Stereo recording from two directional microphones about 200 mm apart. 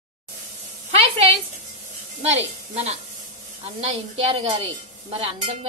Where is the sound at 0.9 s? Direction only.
30° right (ahead or behind).